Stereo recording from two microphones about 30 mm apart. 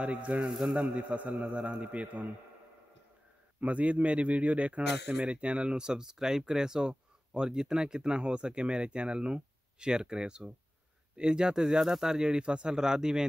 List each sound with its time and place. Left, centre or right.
0.0 s a man's voice: right
0.5 s a man's voice: centre
0.9 s a man's voice: right
3.6 s a man's voice: right
5.8 s speech: right
12.7 s speech: right